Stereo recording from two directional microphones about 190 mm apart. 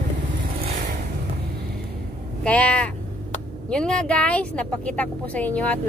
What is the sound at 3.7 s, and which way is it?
Speech, 5° left (ahead or behind).